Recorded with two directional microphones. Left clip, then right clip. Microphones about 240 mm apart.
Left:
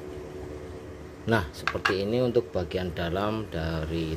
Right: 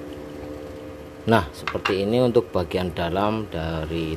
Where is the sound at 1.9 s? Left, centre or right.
Centre.